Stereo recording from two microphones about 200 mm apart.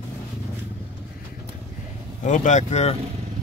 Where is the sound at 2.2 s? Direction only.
35° left (ahead or behind).